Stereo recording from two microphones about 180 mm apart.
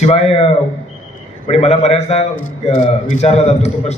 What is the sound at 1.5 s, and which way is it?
A man's voice, 35° left (ahead or behind).